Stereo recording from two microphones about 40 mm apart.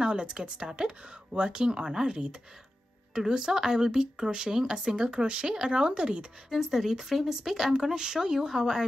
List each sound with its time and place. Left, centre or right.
0.0 s speech: right
6.5 s speech: centre